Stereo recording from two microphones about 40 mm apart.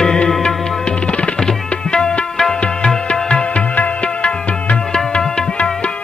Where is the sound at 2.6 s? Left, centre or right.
Left.